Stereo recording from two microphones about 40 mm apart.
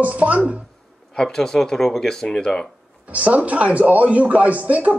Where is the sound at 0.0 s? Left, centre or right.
Right.